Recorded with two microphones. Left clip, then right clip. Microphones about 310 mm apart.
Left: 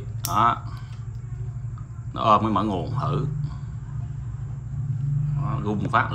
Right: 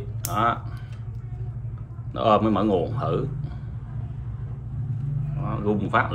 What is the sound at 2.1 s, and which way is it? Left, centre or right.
A man's voice, centre.